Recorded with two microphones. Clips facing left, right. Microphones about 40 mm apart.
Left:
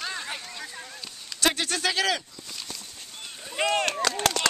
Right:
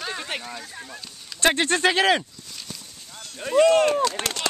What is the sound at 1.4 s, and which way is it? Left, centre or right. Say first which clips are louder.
Speech: right 6 dB; right.